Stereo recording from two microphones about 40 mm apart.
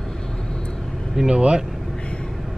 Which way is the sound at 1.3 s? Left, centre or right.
Right.